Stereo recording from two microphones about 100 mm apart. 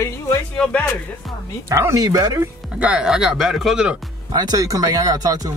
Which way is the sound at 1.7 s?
30° right (ahead or behind).